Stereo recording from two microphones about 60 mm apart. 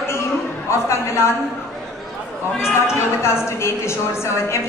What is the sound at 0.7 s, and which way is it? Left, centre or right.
Speech, left.